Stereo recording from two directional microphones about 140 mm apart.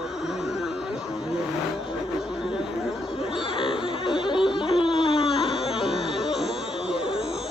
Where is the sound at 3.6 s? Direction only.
40° left (ahead or behind).